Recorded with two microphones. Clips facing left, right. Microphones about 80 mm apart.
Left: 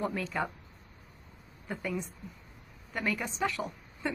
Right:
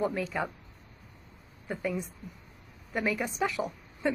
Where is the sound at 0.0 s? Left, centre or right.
Centre.